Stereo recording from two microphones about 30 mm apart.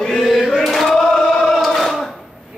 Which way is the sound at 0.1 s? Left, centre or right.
Centre.